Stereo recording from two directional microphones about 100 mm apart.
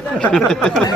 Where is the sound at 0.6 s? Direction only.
10° left (ahead or behind).